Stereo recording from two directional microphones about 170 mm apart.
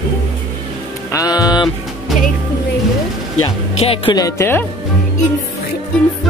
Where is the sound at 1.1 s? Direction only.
20° left (ahead or behind).